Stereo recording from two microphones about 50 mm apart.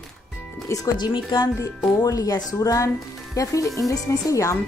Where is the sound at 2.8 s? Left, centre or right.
Left.